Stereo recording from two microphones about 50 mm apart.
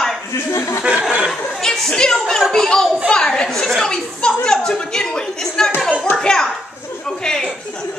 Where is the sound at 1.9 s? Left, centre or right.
Centre.